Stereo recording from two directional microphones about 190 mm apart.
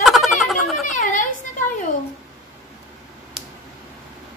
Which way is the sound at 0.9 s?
45° left (ahead or behind).